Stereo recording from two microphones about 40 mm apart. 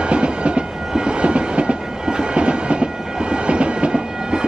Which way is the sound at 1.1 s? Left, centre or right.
Right.